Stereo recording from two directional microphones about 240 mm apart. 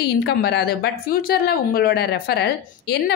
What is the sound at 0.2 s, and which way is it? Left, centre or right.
A woman's voice, left.